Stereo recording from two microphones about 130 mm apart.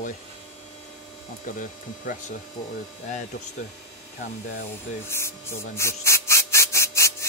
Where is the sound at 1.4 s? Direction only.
90° left.